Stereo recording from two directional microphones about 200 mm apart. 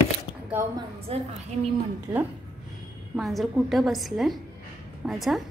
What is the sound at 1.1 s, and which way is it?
Speech, 30° right (ahead or behind).